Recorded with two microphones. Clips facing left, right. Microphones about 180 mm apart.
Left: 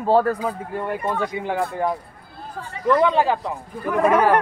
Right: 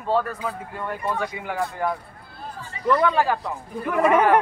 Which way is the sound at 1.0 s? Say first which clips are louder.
Left 3 dB; 25° left (ahead or behind).